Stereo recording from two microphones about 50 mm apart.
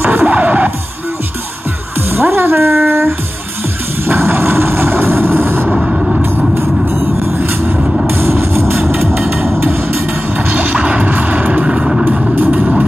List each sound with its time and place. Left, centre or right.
0.0 s music: right
2.0 s music: right
4.1 s vehicle: right
5.7 s music: centre
6.5 s vehicle: right
8.1 s music: right
10.3 s music: right
11.6 s vehicle: centre